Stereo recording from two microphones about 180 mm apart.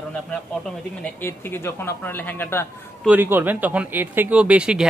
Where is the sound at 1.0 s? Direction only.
10° left (ahead or behind).